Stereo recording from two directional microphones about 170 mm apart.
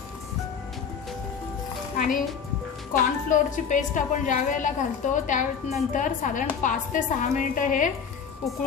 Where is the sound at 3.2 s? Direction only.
50° left (ahead or behind).